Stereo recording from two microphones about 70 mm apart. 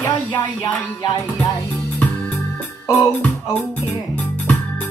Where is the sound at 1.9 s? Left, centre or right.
Left.